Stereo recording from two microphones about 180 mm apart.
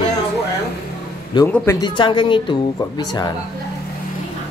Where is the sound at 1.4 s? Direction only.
10° left (ahead or behind).